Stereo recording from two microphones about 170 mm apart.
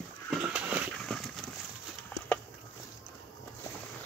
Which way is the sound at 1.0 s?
5° left (ahead or behind).